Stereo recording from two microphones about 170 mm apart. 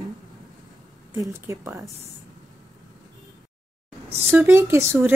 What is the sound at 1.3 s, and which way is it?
Speech, 15° right (ahead or behind).